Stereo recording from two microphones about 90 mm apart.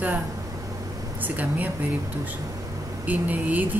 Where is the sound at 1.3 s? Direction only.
15° right (ahead or behind).